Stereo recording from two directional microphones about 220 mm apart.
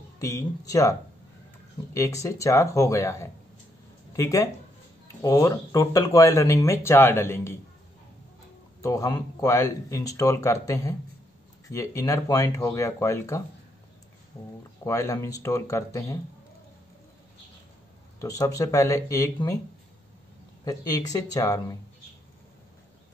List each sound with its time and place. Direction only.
0.2 s speech: 15° left (ahead or behind)
2.0 s speech: 15° left (ahead or behind)
8.8 s speech: 15° left (ahead or behind)
14.8 s speech: 15° left (ahead or behind)
18.2 s speech: 15° left (ahead or behind)
20.6 s speech: 15° left (ahead or behind)